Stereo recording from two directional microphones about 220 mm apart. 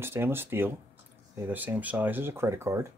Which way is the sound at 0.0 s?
10° right (ahead or behind).